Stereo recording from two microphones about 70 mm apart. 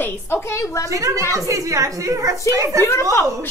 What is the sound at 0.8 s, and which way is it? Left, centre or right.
A woman's voice, right.